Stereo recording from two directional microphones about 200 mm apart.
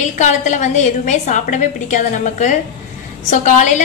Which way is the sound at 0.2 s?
35° left (ahead or behind).